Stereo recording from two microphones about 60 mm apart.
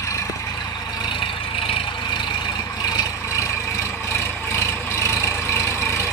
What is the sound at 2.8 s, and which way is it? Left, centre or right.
Vehicle, left.